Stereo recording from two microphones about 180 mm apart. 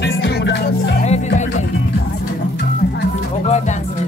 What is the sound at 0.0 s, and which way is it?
Music, 70° left (ahead or behind).